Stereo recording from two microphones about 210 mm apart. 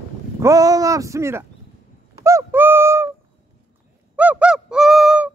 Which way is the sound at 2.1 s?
15° right (ahead or behind).